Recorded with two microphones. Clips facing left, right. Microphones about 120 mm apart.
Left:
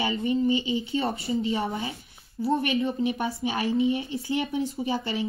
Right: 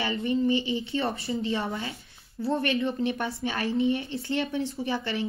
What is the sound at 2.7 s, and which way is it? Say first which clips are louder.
A woman's voice: left 1 dB; 10° left (ahead or behind).